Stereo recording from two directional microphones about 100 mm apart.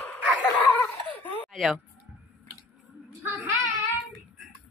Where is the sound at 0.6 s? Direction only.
20° left (ahead or behind).